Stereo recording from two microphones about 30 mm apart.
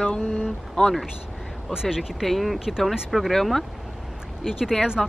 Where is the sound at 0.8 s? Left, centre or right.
Left.